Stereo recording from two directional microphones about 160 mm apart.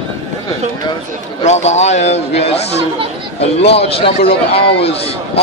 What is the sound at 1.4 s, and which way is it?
A man's voice, 45° left (ahead or behind).